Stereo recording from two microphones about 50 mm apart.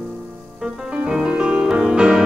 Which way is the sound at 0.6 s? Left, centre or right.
Centre.